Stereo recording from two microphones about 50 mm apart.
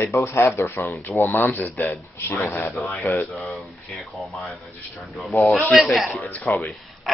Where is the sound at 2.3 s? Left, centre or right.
Left.